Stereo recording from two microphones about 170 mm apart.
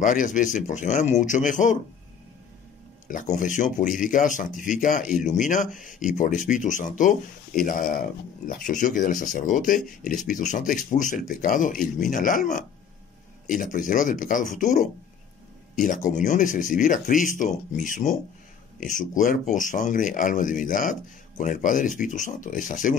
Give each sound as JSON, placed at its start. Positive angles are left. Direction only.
{"t": 0.0, "sound": "speech", "side_deg": 50}
{"t": 3.1, "sound": "speech", "side_deg": 50}